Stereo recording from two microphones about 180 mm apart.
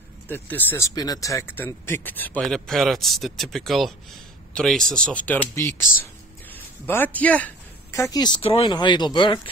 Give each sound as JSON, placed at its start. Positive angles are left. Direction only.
{"t": 0.3, "sound": "a woman's voice", "side_deg": 10}